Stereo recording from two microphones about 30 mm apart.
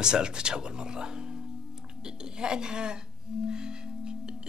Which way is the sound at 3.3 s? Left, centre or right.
Right.